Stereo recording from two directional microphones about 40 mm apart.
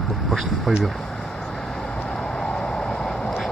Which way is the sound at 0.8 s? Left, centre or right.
Centre.